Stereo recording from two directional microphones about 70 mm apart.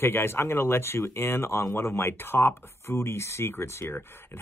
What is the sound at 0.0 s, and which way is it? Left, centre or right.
Speech, left.